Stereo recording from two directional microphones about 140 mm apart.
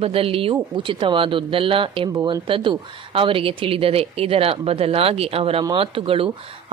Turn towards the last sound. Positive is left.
turn(degrees=-40)  # may be behind; listen again after turning